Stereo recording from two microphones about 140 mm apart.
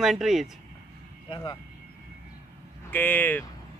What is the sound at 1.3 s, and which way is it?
Speech, 30° left (ahead or behind).